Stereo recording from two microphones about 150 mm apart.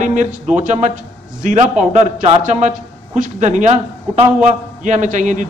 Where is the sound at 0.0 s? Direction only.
55° right (ahead or behind).